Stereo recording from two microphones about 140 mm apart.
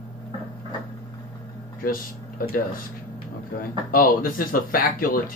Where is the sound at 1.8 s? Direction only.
90° left.